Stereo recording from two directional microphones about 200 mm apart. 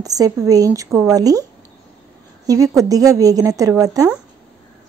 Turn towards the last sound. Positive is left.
turn(degrees=-15)  # may be behind; listen again after turning